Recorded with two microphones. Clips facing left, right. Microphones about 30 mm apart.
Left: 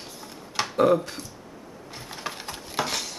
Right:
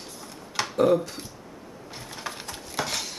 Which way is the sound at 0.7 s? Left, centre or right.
Centre.